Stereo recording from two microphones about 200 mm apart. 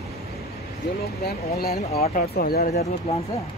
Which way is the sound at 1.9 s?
30° left (ahead or behind).